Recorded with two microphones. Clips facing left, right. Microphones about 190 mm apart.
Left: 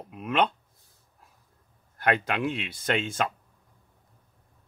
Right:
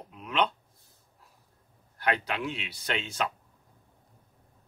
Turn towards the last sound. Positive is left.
turn(degrees=50)  # may be behind; listen again after turning